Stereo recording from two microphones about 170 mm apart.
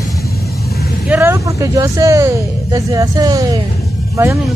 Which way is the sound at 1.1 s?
15° right (ahead or behind).